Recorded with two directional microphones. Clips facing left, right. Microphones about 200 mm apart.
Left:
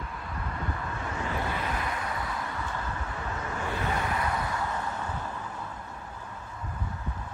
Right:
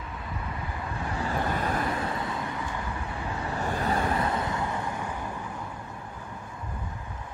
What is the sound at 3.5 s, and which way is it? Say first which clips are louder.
Vehicle: right 4 dB; 40° right (ahead or behind).